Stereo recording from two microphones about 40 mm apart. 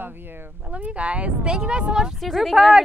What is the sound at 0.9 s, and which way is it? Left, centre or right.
Speech, right.